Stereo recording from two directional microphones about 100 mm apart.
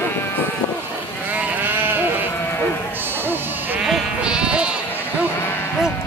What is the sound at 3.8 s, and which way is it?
Sheep, 10° right (ahead or behind).